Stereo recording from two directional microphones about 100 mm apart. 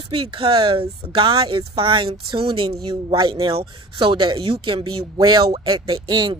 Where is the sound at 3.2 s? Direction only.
50° right (ahead or behind).